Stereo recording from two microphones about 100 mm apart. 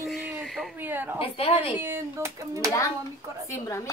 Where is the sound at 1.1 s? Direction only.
70° left (ahead or behind).